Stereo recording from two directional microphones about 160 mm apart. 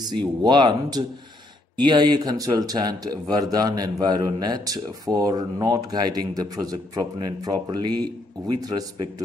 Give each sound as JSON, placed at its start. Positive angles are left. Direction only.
{"t": 0.4, "sound": "speech", "side_deg": -30}